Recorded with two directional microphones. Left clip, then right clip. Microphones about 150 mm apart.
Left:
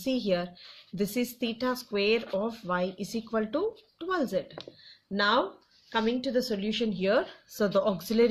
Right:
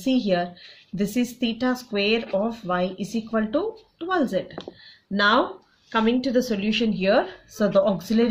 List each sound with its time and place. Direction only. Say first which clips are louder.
0.0 s a woman's voice: right 6 dB; 40° left (ahead or behind)